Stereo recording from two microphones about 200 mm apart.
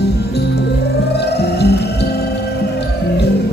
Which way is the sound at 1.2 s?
55° left (ahead or behind).